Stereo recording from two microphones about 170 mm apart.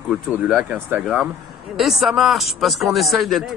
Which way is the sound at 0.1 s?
5° right (ahead or behind).